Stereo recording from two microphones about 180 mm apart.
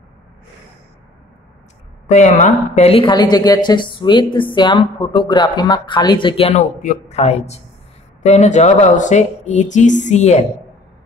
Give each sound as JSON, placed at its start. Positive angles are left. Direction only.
{"t": 2.0, "sound": "speech", "side_deg": 40}